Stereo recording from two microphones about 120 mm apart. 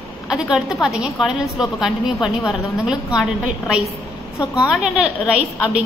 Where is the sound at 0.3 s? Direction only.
5° right (ahead or behind).